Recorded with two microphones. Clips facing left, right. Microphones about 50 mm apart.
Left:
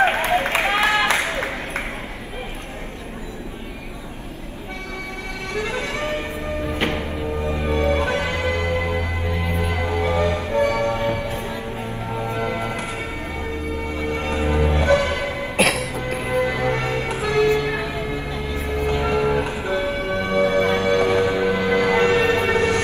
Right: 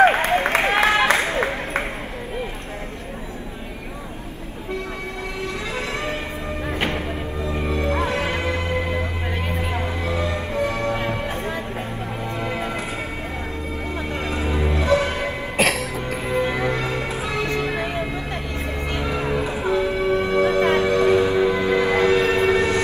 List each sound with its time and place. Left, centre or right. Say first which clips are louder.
0.0 s a sound: right 3 dB; right
0.4 s applause: right 1 dB; right
5.5 s vehicle: left 6 dB; left
7.6 s music: left 2 dB; left
9.5 s music: left 3 dB; left
11.1 s music: right 1 dB; right
12.2 s music: left 3 dB; left
14.0 s music: left 4 dB; left
15.5 s music: left 1 dB; centre
16.2 s music: left 1 dB; left
17.7 s music: even; right
18.9 s vehicle: left 3 dB; left
19.7 s music: right 4 dB; left